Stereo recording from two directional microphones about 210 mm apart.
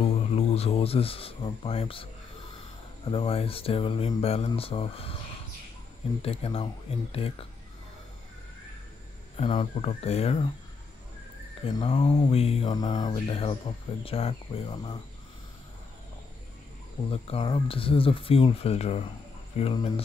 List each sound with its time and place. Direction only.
0.0 s speech: 30° left (ahead or behind)
3.1 s speech: 25° left (ahead or behind)
6.2 s speech: 25° left (ahead or behind)
9.4 s speech: 30° left (ahead or behind)
11.6 s speech: 25° left (ahead or behind)
17.1 s speech: 25° left (ahead or behind)